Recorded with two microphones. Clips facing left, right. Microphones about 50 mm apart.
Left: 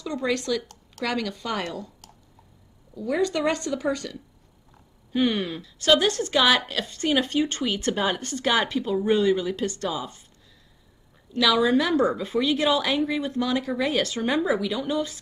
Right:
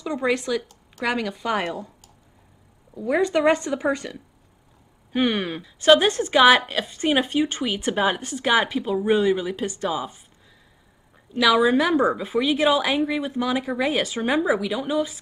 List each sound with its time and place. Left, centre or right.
0.0 s a woman's voice: right
3.0 s a woman's voice: right
11.3 s a woman's voice: centre